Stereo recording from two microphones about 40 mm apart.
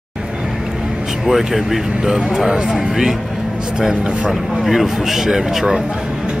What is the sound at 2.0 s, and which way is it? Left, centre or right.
Speech, centre.